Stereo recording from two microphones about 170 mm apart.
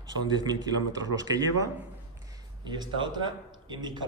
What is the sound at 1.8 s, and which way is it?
A man's voice, 15° right (ahead or behind).